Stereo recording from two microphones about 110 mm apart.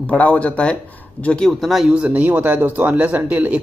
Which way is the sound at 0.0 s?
10° left (ahead or behind).